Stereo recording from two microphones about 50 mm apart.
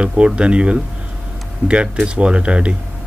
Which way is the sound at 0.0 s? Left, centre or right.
Right.